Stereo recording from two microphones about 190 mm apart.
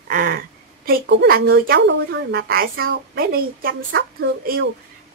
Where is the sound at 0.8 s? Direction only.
60° right (ahead or behind).